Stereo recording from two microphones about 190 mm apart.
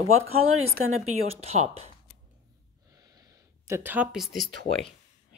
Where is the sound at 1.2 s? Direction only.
35° right (ahead or behind).